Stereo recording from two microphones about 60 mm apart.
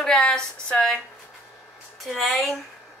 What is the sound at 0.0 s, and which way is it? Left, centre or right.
Speech, centre.